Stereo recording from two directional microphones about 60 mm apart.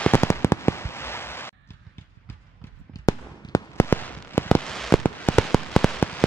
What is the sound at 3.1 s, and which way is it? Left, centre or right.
Fireworks, left.